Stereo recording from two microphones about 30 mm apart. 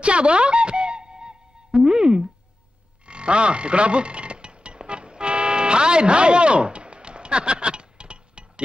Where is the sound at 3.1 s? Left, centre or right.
Right.